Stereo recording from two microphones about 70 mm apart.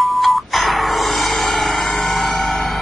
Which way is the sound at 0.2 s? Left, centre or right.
Centre.